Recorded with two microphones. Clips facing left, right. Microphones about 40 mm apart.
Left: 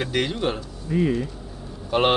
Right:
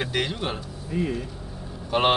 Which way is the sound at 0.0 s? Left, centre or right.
Centre.